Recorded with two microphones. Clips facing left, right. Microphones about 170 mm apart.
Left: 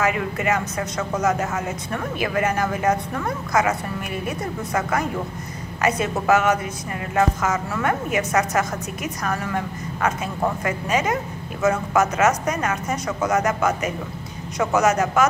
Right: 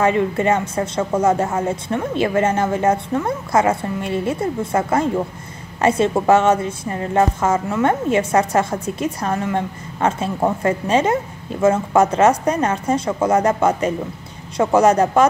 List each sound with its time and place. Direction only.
0.0 s a woman's voice: 30° right (ahead or behind)